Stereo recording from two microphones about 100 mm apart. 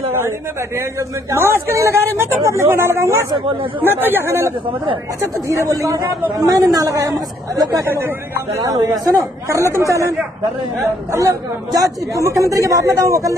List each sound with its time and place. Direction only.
0.7 s speech: 25° right (ahead or behind)
8.5 s speech: 30° right (ahead or behind)
11.1 s speech: 30° right (ahead or behind)